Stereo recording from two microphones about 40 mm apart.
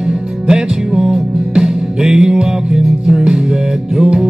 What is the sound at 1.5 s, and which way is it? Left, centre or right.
Music, centre.